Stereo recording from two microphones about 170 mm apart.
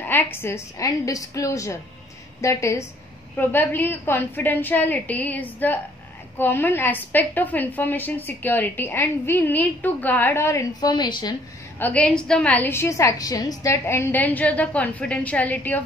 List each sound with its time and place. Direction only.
0.0 s a woman's voice: 10° left (ahead or behind)
11.8 s a woman's voice: 10° left (ahead or behind)